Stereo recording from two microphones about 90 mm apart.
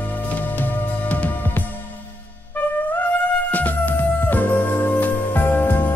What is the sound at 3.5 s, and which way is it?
Music, 20° left (ahead or behind).